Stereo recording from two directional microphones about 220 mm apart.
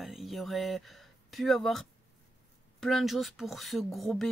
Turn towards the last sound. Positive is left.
turn(degrees=0)  # may be behind; listen again after turning